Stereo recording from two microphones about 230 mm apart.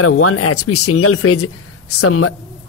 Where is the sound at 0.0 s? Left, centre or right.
Left.